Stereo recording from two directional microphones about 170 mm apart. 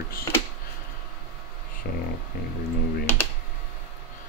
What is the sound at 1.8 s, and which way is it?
Speech, 60° left (ahead or behind).